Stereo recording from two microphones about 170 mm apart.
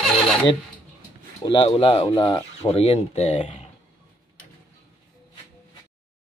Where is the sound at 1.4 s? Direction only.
30° left (ahead or behind).